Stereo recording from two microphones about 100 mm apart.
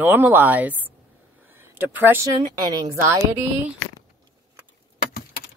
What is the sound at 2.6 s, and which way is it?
Speech, 40° right (ahead or behind).